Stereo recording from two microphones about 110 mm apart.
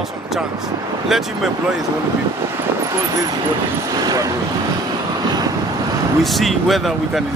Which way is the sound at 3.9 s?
35° right (ahead or behind).